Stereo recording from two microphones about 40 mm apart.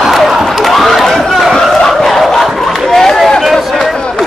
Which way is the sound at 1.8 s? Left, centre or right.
Centre.